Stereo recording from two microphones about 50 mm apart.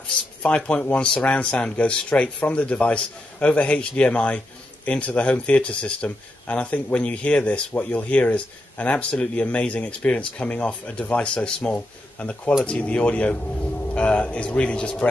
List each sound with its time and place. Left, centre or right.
0.6 s speech: centre